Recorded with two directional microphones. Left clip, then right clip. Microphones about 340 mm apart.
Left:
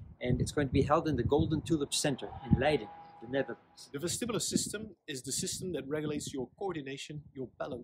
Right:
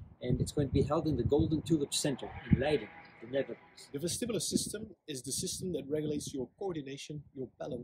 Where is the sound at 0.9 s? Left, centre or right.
Centre.